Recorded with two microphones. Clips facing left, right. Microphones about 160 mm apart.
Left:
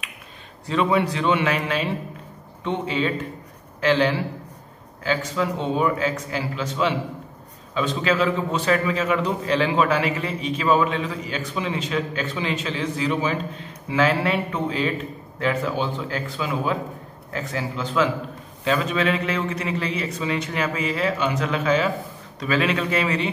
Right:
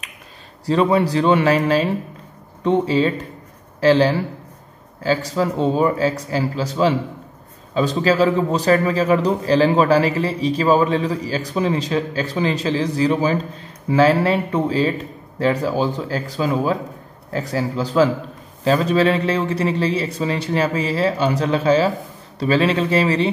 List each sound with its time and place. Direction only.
0.7 s a man's voice: 35° right (ahead or behind)